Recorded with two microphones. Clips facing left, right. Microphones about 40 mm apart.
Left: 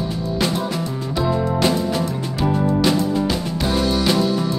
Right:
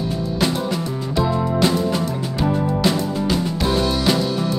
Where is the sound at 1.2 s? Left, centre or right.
Centre.